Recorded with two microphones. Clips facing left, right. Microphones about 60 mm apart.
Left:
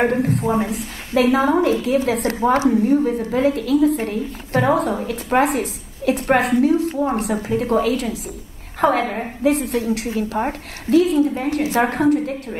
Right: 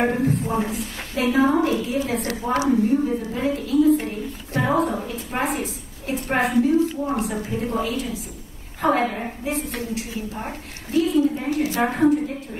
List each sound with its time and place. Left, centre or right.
0.0 s a woman's voice: left
11.9 s a woman's voice: left